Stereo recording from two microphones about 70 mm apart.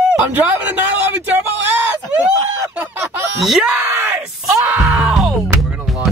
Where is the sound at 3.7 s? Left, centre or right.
Right.